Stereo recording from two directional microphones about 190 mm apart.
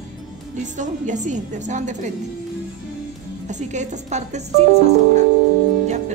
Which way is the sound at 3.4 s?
40° right (ahead or behind).